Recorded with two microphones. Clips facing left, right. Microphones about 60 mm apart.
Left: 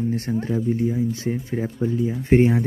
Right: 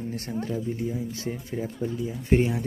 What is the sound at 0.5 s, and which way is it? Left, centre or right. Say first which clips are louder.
Speech: left 10 dB; left.